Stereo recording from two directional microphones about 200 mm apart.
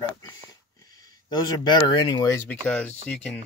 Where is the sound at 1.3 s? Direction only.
20° left (ahead or behind); by 3.4 s 5° left (ahead or behind).